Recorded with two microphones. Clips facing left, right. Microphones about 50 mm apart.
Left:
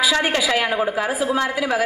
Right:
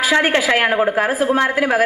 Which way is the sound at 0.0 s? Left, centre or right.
Right.